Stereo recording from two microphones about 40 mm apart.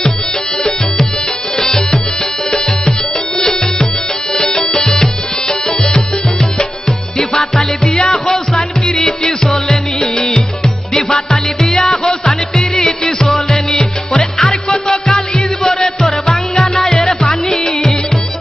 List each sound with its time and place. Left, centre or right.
0.6 s music: centre
16.7 s music: centre